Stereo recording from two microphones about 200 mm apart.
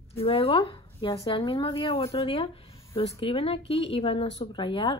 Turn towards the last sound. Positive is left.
turn(degrees=25)  # may be behind; listen again after turning